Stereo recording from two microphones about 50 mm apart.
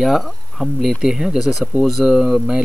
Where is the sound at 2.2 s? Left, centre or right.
Centre.